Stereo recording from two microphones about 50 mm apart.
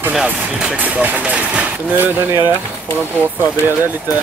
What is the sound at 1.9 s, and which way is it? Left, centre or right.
Speech, right.